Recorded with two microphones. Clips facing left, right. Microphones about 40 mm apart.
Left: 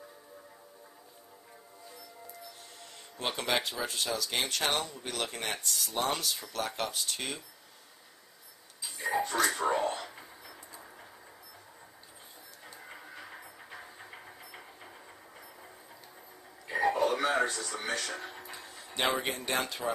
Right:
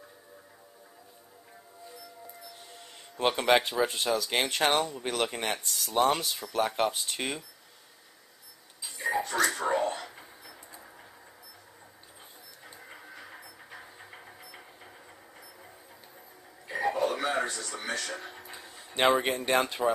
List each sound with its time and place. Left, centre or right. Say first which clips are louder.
2.8 s music: right 8 dB; centre
3.4 s speech: right 7 dB; right
5.8 s speech: right 8 dB; centre
6.5 s speech: right 10 dB; right
8.8 s a sound: right 1 dB; centre
12.6 s train: even; centre
16.6 s music: left 1 dB; centre
18.9 s speech: right 6 dB; right